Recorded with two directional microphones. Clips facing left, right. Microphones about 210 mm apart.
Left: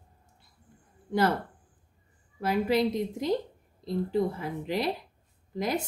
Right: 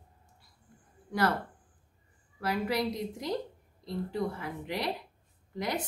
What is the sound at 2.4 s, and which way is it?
A woman's voice, 25° left (ahead or behind).